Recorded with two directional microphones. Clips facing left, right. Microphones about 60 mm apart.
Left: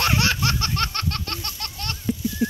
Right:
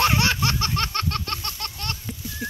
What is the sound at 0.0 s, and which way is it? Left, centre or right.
Laughter, centre.